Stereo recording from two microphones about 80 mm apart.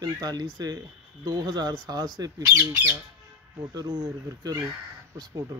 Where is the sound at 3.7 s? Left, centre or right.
Right.